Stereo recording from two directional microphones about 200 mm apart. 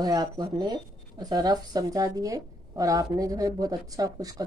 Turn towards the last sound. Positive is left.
turn(degrees=-20)  # may be behind; listen again after turning